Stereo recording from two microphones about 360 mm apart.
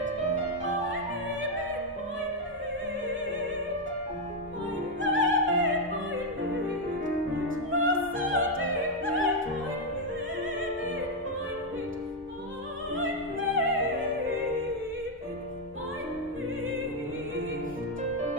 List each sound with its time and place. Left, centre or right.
5.0 s music: right
7.4 s opera: right
12.9 s opera: right